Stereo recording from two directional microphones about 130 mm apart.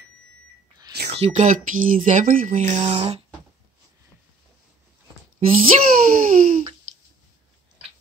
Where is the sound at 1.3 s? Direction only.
80° right; by 3.2 s 50° right (ahead or behind).